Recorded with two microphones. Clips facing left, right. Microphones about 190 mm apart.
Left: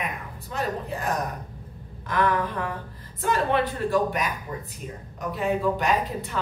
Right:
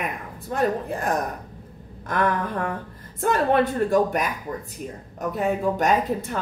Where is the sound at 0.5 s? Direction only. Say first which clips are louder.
Right 6 dB; 50° right (ahead or behind).